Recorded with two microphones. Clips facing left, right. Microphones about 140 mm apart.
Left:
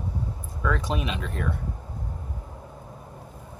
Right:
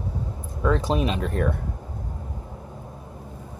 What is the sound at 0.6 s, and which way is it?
Speech, 30° right (ahead or behind).